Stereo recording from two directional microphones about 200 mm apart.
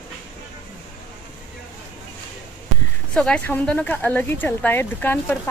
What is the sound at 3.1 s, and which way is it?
Speech, 5° left (ahead or behind).